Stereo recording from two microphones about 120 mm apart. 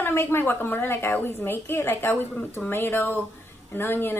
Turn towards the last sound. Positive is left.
turn(degrees=20)  # may be behind; listen again after turning